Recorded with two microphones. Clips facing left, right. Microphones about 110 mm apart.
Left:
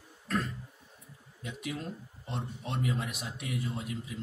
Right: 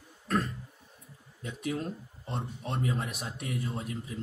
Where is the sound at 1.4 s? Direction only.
40° right (ahead or behind).